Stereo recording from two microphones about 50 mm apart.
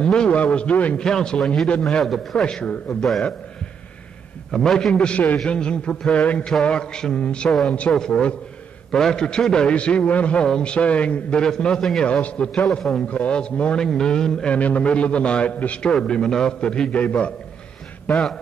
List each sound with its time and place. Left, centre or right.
0.0 s a man's voice: centre
0.9 s a man's voice: centre
2.0 s a man's voice: centre
2.4 s a man's voice: centre
4.5 s a man's voice: centre
12.1 s a man's voice: left
14.5 s a man's voice: left
15.9 s a man's voice: centre
18.1 s a man's voice: centre